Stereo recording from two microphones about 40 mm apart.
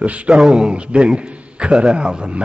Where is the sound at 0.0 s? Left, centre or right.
Right.